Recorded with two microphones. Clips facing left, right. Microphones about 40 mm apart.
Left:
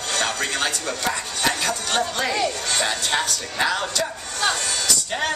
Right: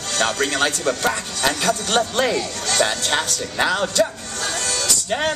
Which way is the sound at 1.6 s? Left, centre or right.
Right.